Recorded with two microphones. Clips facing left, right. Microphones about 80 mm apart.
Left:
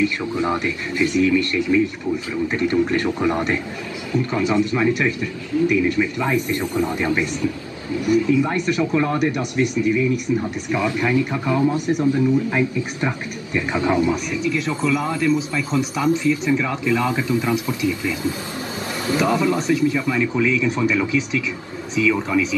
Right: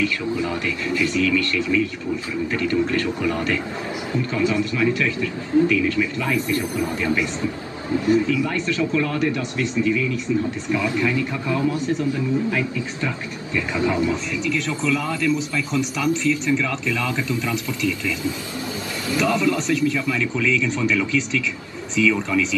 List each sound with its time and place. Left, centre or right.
0.0 s speech: left
8.3 s speech: left